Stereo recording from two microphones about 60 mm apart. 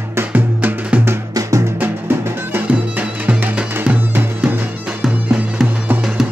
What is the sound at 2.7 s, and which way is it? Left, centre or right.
Music, right.